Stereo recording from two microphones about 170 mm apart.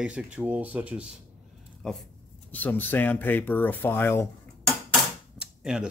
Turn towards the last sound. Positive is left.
turn(degrees=-5)  # may be behind; listen again after turning